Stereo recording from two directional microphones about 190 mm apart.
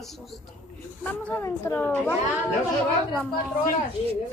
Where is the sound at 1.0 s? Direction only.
10° left (ahead or behind).